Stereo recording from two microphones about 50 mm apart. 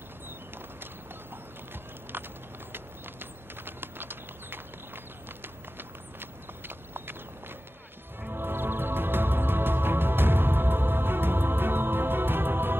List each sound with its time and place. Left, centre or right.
2.1 s typing: right
2.7 s a sound: right
8.3 s music: right